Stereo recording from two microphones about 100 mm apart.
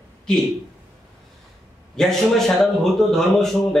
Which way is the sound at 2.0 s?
5° left (ahead or behind).